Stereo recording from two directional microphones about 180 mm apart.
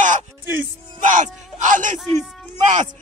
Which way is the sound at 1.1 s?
45° right (ahead or behind).